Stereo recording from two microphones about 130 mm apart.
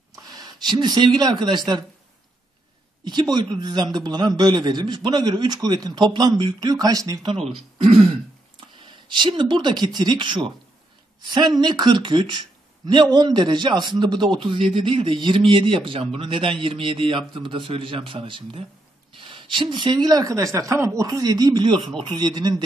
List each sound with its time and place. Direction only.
0.3 s speech: 35° right (ahead or behind)
3.1 s a man's voice: 35° right (ahead or behind)
7.3 s speech: 50° right (ahead or behind)
8.8 s a man's voice: 35° right (ahead or behind)